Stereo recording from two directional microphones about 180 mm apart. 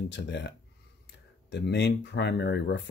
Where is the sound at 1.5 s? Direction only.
70° left (ahead or behind).